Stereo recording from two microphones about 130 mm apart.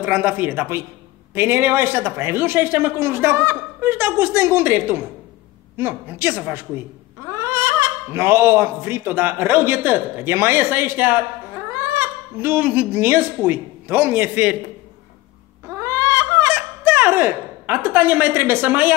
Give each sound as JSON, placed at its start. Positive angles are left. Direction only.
{"t": 0.0, "sound": "speech", "side_deg": -15}
{"t": 15.8, "sound": "a sound", "side_deg": -25}
{"t": 16.5, "sound": "fowl", "side_deg": -15}